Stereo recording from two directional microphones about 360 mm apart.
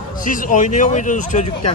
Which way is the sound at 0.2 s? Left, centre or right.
Left.